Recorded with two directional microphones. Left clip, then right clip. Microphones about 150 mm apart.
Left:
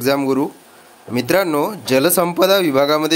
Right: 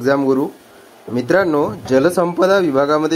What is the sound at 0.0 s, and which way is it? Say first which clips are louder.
Speech: right 2 dB; 10° left (ahead or behind).